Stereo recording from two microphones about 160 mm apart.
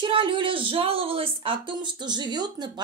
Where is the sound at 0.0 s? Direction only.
30° right (ahead or behind).